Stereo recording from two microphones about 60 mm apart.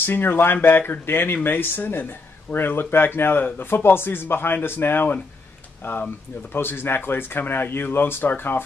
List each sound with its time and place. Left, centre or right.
0.0 s speech: left